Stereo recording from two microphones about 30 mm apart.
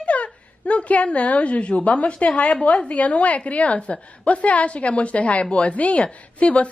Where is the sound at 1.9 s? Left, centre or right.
Left.